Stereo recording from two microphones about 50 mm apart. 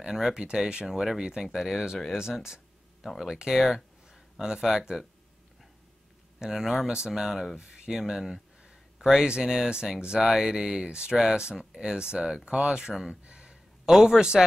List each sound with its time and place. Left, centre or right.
0.0 s speech: centre
2.3 s a sound: centre
3.3 s speech: centre
6.4 s speech: centre
7.9 s speech: centre
13.1 s a sound: centre